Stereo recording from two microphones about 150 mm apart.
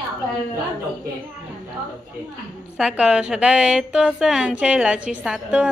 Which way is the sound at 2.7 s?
5° right (ahead or behind).